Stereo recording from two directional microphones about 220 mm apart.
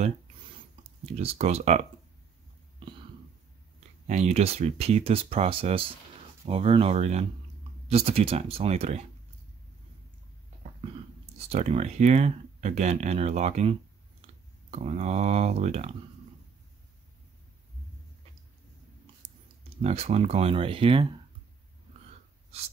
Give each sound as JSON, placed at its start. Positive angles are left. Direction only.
{"t": 1.1, "sound": "speech", "side_deg": -30}
{"t": 4.1, "sound": "speech", "side_deg": -30}
{"t": 11.3, "sound": "speech", "side_deg": -30}
{"t": 19.8, "sound": "speech", "side_deg": -30}